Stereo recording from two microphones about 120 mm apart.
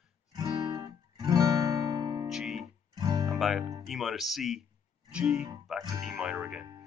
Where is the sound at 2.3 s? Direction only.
5° right (ahead or behind).